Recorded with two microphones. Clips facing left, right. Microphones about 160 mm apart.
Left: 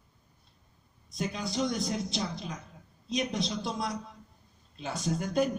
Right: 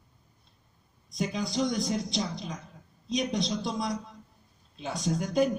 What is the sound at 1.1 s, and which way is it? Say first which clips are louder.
A man's voice: right 3 dB; centre (ahead or behind).